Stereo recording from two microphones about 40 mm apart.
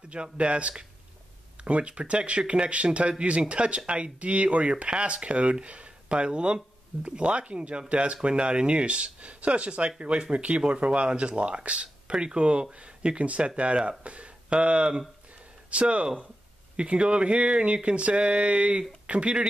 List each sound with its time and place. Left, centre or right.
0.1 s speech: right